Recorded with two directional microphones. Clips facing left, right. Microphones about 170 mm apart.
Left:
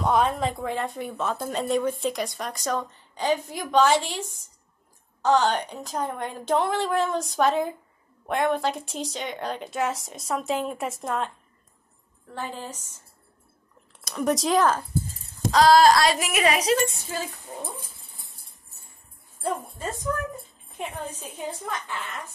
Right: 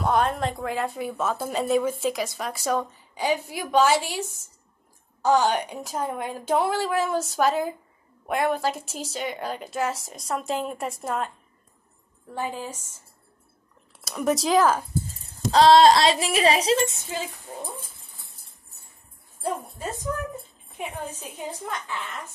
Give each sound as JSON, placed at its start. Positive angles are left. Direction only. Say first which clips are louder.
{"t": 0.0, "sound": "a woman's voice", "louder": "even", "side_deg": 0}
{"t": 12.4, "sound": "a woman's voice", "louder": "right 3 dB", "side_deg": -10}
{"t": 14.0, "sound": "a woman's voice", "louder": "even", "side_deg": -5}
{"t": 15.2, "sound": "speech", "louder": "right 2 dB", "side_deg": -30}
{"t": 17.6, "sound": "dog", "louder": "even", "side_deg": 15}
{"t": 19.4, "sound": "a woman's voice", "louder": "even", "side_deg": -10}